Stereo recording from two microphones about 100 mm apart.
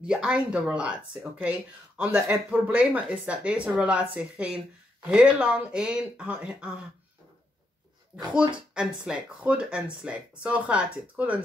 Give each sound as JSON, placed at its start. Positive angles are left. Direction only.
{"t": 0.0, "sound": "speech", "side_deg": -10}
{"t": 9.1, "sound": "speech", "side_deg": -10}